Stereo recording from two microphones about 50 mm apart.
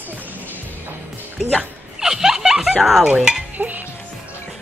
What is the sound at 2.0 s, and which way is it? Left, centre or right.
A woman's voice, centre.